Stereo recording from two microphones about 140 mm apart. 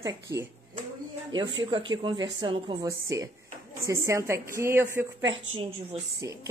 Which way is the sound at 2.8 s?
25° right (ahead or behind).